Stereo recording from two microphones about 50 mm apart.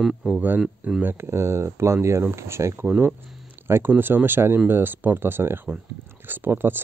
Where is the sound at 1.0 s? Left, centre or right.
Right.